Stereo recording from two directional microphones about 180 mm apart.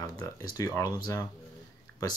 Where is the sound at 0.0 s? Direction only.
20° left (ahead or behind).